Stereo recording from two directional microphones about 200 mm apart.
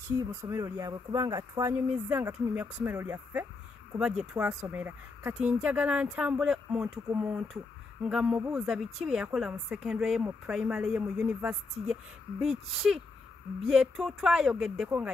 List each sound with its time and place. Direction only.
0.2 s a woman's voice: 15° right (ahead or behind)